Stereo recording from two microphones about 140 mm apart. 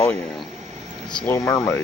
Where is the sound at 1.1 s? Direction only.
10° left (ahead or behind).